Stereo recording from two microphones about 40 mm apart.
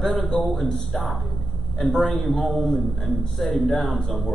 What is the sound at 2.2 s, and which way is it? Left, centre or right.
Speech, centre.